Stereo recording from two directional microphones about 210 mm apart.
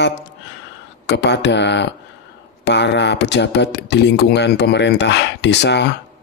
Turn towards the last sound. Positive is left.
turn(degrees=55)  # may be behind; listen again after turning